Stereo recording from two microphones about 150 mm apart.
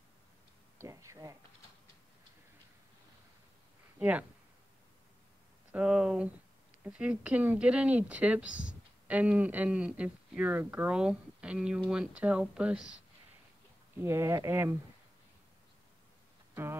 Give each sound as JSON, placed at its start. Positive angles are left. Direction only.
{"t": 0.7, "sound": "a sound", "side_deg": -20}
{"t": 4.0, "sound": "speech", "side_deg": -10}
{"t": 5.7, "sound": "speech", "side_deg": -5}
{"t": 13.9, "sound": "speech", "side_deg": -15}